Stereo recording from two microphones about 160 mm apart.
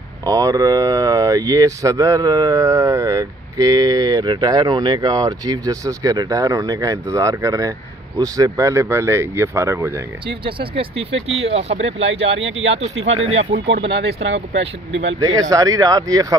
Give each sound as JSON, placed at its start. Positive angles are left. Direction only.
{"t": 0.2, "sound": "speech", "side_deg": -25}
{"t": 10.2, "sound": "speech", "side_deg": -35}
{"t": 13.7, "sound": "speech", "side_deg": -90}
{"t": 15.2, "sound": "speech", "side_deg": -20}